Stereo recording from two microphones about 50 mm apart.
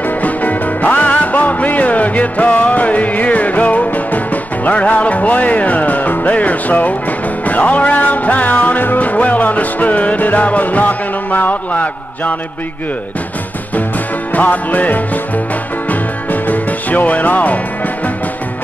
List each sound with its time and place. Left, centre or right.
0.2 s music: left
14.3 s music: left